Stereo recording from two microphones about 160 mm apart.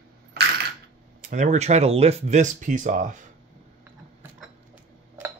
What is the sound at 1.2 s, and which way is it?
Speech, 50° right (ahead or behind).